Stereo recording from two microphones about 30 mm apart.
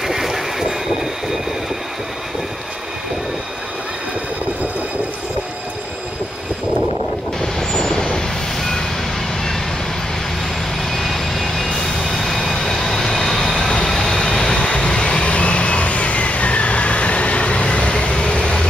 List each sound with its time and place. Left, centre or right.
0.0 s train: centre
7.7 s vehicle: centre
10.9 s vehicle: centre; by 14.6 s left
14.6 s vehicle: left
18.1 s vehicle: left